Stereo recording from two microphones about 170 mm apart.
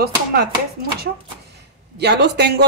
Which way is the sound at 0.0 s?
65° right (ahead or behind).